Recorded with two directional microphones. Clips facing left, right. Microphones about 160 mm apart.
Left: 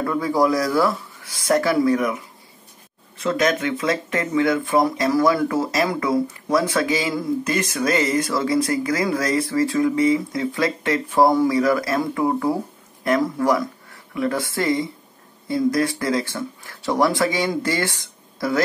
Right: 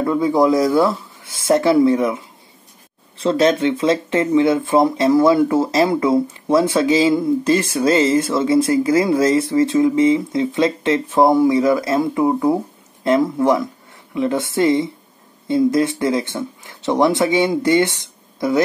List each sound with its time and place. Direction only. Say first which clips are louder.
0.0 s speech: right 4 dB; 20° right (ahead or behind)